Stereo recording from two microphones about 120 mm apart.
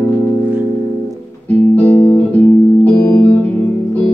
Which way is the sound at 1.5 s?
15° left (ahead or behind).